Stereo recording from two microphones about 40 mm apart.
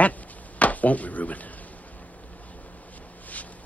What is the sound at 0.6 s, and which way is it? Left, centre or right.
Speech, left.